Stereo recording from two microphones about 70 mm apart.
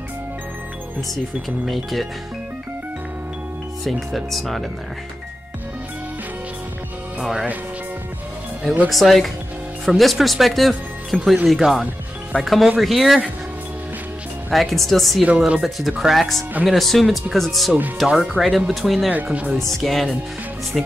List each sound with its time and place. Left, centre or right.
1.7 s speech: centre
3.8 s speech: centre
7.2 s speech: centre
8.8 s speech: centre
14.5 s speech: centre
15.2 s speech: centre
16.0 s speech: centre
19.0 s speech: centre
19.8 s speech: centre